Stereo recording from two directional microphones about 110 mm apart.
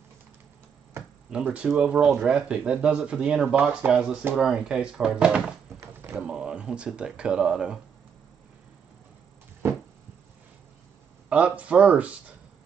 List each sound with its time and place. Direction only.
1.3 s speech: 10° right (ahead or behind)
5.8 s a sound: 25° right (ahead or behind)
6.2 s speech: 10° right (ahead or behind)
11.2 s speech: 10° right (ahead or behind)